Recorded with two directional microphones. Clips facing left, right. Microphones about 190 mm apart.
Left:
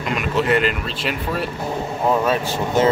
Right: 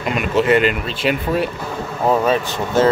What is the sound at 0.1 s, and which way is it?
Speech, centre (ahead or behind).